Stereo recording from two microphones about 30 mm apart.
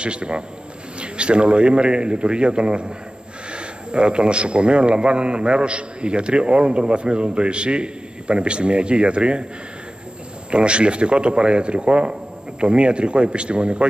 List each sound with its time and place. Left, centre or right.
0.0 s a man's voice: right
10.5 s a man's voice: right